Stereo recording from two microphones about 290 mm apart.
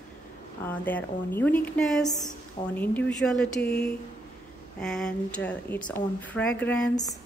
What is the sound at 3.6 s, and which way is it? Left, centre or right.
Speech, left.